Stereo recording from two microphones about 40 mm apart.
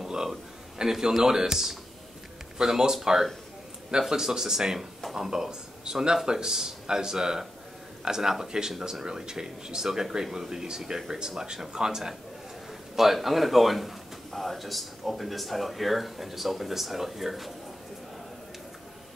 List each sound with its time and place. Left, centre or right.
0.0 s a man's voice: centre